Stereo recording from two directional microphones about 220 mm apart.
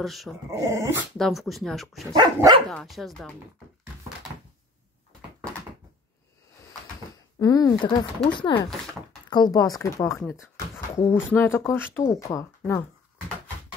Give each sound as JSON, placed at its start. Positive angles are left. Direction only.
{"t": 0.0, "sound": "speech", "side_deg": 0}
{"t": 0.5, "sound": "dog", "side_deg": -15}
{"t": 1.1, "sound": "speech", "side_deg": 0}
{"t": 2.0, "sound": "dog", "side_deg": -20}
{"t": 2.7, "sound": "speech", "side_deg": 0}
{"t": 7.3, "sound": "speech", "side_deg": 15}